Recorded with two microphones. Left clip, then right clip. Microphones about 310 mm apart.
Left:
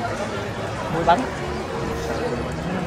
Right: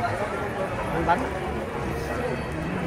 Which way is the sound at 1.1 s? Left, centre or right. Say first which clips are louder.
Left 6 dB; left.